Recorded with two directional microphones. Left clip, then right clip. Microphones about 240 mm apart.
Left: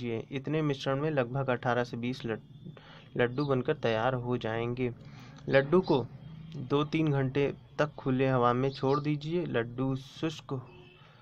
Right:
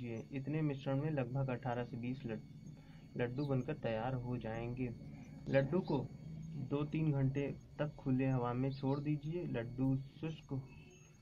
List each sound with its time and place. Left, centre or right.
0.0 s speech: left